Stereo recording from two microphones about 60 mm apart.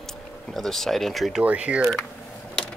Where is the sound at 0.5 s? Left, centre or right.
Centre.